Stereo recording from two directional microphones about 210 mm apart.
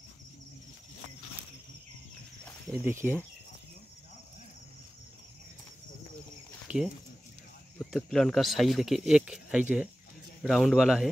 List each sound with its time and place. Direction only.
3.0 s speech: centre (ahead or behind)
6.7 s speech: 35° right (ahead or behind)
7.8 s speech: centre (ahead or behind)